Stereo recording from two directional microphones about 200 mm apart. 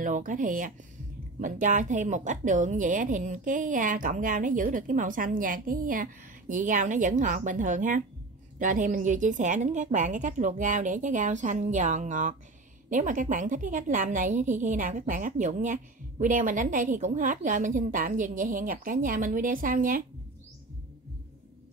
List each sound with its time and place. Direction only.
0.0 s a woman's voice: 40° right (ahead or behind)